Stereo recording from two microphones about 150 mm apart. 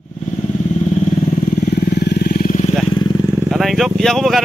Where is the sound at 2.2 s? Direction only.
80° left.